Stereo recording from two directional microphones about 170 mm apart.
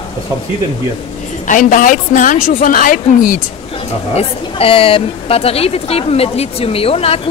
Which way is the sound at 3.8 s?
35° left (ahead or behind).